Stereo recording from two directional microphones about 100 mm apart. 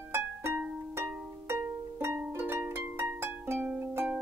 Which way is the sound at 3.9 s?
20° right (ahead or behind).